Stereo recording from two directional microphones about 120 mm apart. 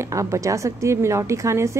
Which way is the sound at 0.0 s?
25° right (ahead or behind).